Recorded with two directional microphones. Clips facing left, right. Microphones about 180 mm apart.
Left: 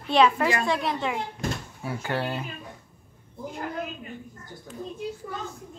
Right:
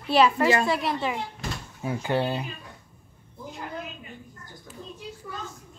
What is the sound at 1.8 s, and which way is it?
Speech, 20° right (ahead or behind).